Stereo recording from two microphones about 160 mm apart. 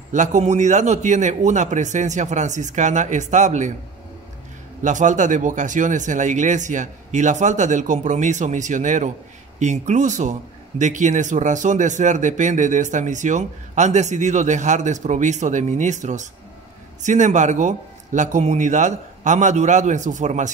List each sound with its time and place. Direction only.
0.1 s speech: 50° right (ahead or behind)
4.8 s speech: 50° right (ahead or behind)